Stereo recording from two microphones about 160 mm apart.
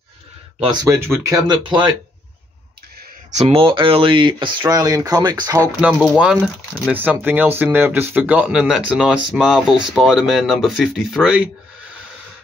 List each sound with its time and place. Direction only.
0.8 s speech: 15° right (ahead or behind)
1.5 s speech: 30° right (ahead or behind)
3.3 s speech: 40° right (ahead or behind)
5.8 s speech: 5° right (ahead or behind)